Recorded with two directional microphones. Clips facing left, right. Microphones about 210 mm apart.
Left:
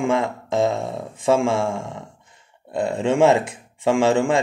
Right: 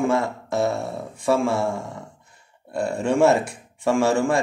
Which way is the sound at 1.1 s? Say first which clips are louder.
Left 2 dB; 90° left.